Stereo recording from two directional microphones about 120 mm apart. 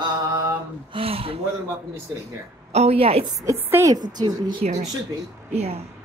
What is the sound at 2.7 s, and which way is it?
Speech, 60° right (ahead or behind).